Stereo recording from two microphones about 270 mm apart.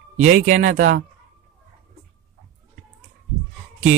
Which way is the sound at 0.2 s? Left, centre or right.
Right.